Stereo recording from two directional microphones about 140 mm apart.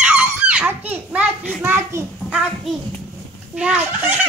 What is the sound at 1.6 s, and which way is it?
Speech, 15° right (ahead or behind).